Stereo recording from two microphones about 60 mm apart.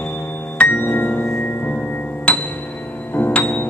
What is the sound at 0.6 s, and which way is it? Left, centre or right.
Music, left.